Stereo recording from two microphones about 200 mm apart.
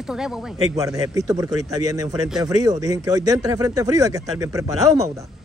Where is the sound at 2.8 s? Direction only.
15° right (ahead or behind).